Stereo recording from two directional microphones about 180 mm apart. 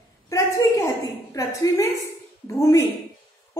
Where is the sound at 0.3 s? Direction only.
15° left (ahead or behind).